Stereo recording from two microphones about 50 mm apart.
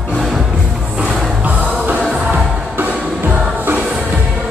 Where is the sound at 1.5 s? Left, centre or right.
Right.